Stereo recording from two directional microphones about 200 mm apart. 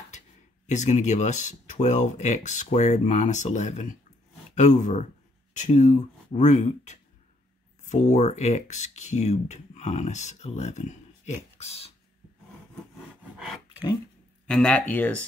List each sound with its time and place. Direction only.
0.7 s speech: 35° left (ahead or behind)
14.5 s speech: 5° left (ahead or behind)